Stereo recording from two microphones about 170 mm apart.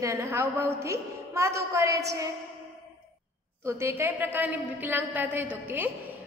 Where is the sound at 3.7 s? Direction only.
15° right (ahead or behind).